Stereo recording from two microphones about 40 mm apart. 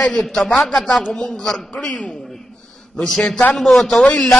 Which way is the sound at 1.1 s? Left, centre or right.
Centre.